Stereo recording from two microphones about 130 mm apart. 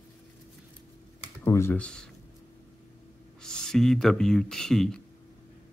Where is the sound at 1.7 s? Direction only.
5° left (ahead or behind).